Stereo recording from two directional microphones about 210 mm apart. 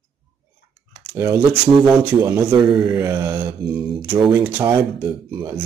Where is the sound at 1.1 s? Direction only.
15° right (ahead or behind).